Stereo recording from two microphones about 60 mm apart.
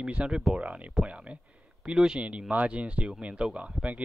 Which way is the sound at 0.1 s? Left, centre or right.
Centre.